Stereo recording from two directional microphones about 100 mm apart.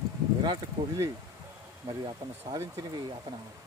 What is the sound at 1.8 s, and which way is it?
Speech, 45° right (ahead or behind).